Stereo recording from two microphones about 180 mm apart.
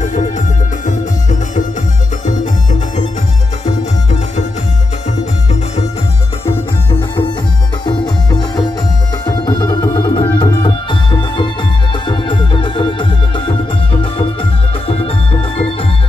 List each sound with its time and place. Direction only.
0.0 s music: 45° left (ahead or behind)
3.6 s music: 40° left (ahead or behind)
7.8 s music: 25° left (ahead or behind)